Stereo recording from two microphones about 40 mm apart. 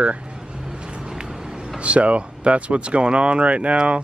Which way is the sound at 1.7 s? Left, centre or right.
Right.